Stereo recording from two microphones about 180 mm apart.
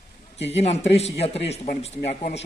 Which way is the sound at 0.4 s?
35° left (ahead or behind).